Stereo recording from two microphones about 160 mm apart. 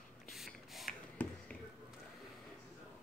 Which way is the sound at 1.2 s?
10° left (ahead or behind).